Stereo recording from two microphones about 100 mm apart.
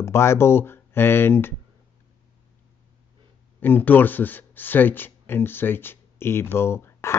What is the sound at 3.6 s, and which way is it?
Speech, 20° left (ahead or behind).